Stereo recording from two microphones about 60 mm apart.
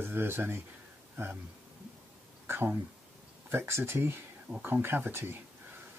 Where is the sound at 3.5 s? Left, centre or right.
Right.